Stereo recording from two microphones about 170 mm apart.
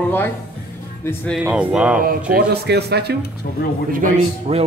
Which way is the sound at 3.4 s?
65° left (ahead or behind).